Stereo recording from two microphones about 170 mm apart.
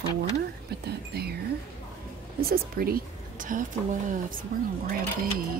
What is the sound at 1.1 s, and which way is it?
Speech, 70° right (ahead or behind).